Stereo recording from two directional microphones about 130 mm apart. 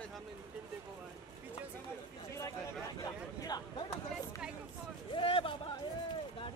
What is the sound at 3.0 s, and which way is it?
Speech, 30° left (ahead or behind).